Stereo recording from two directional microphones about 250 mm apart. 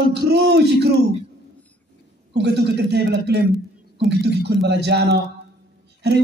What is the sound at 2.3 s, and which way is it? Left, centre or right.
Speech, right.